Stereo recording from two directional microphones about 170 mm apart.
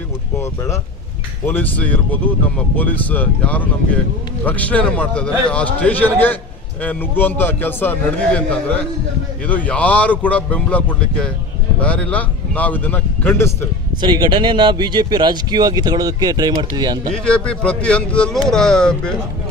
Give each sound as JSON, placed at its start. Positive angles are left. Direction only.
{"t": 1.4, "sound": "a man's voice", "side_deg": 10}
{"t": 14.0, "sound": "speech", "side_deg": -25}
{"t": 17.1, "sound": "speech", "side_deg": 5}